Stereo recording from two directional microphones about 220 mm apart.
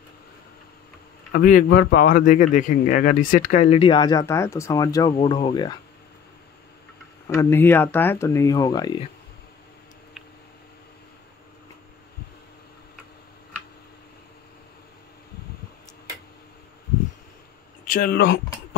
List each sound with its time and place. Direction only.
1.3 s speech: 40° left (ahead or behind); by 5.8 s 20° left (ahead or behind)
7.2 s speech: 15° left (ahead or behind)
17.8 s speech: 40° left (ahead or behind)